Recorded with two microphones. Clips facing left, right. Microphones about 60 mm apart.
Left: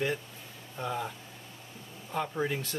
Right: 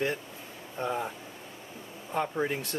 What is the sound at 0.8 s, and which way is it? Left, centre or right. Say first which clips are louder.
Speech: right 3 dB; centre.